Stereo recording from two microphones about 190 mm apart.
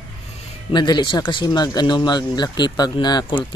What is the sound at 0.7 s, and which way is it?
Speech, 25° left (ahead or behind).